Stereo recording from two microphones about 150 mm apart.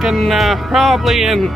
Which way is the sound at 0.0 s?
Centre (ahead or behind).